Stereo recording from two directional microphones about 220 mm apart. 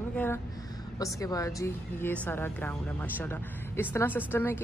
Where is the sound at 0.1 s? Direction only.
10° left (ahead or behind).